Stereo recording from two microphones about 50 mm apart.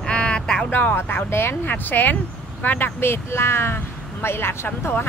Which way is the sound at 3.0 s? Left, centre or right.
Left.